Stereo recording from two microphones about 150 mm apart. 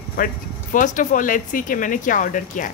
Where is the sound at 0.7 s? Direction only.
60° left (ahead or behind).